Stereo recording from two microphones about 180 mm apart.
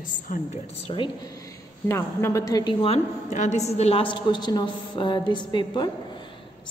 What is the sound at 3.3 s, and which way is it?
A woman's voice, 40° left (ahead or behind).